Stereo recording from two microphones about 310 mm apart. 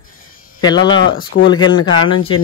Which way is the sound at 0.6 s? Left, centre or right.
Centre.